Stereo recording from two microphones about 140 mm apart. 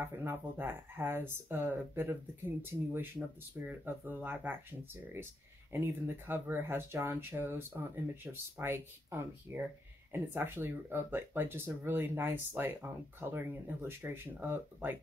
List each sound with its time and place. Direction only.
0.0 s speech: 15° right (ahead or behind)
5.7 s speech: 15° right (ahead or behind)